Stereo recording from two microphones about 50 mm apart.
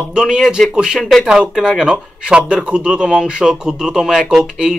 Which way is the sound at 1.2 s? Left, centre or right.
Centre.